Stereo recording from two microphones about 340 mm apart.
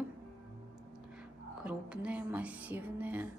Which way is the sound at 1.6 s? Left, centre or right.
Centre.